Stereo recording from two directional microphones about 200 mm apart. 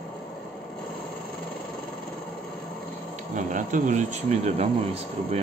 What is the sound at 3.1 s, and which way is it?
Speech, 40° right (ahead or behind).